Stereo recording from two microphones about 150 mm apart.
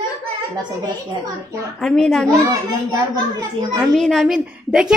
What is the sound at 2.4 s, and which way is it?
A child's voice, 25° right (ahead or behind).